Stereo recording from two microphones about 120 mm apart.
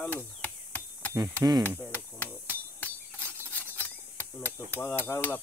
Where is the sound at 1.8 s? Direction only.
15° left (ahead or behind).